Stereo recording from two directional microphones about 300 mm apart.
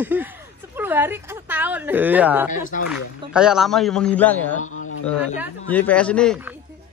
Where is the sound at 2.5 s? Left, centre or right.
Left.